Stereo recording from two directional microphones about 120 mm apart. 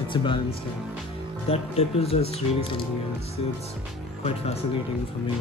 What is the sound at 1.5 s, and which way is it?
Speech, 55° left (ahead or behind).